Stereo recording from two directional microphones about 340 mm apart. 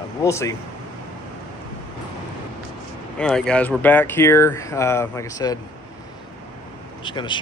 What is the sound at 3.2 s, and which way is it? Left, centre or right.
Speech, centre.